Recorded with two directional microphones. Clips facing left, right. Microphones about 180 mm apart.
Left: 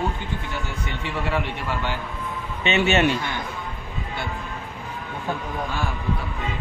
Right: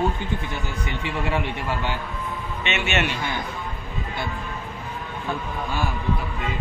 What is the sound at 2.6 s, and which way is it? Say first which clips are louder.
Speech: left 6 dB; 35° left (ahead or behind).